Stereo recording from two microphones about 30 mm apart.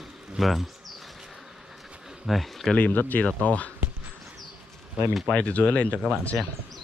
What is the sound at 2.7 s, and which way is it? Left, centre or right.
Speech, left.